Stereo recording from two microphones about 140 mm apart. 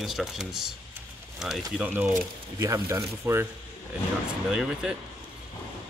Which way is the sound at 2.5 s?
25° right (ahead or behind).